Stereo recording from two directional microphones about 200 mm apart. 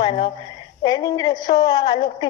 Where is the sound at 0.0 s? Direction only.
25° left (ahead or behind).